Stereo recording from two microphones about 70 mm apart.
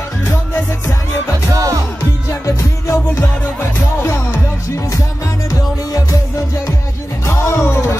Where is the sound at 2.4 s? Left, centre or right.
Left.